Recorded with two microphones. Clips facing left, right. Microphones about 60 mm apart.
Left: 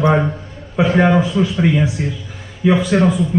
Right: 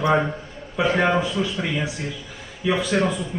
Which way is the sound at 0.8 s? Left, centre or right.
Centre.